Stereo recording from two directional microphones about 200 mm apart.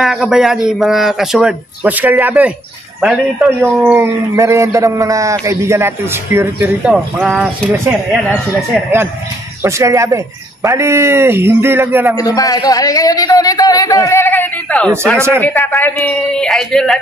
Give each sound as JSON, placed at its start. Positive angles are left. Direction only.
{"t": 0.0, "sound": "a man's voice", "side_deg": 0}
{"t": 7.7, "sound": "a man's voice", "side_deg": -10}
{"t": 9.6, "sound": "a man's voice", "side_deg": -15}
{"t": 12.2, "sound": "a man's voice", "side_deg": 20}
{"t": 15.1, "sound": "a man's voice", "side_deg": -10}
{"t": 15.4, "sound": "speech", "side_deg": 10}